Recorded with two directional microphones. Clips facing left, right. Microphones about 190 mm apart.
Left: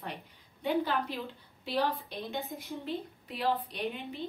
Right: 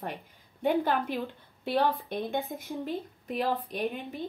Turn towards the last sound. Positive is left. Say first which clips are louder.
# right 4 dB
turn(degrees=-45)  # may be behind; listen again after turning